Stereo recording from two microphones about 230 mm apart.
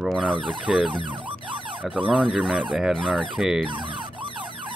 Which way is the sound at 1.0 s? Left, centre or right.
Right.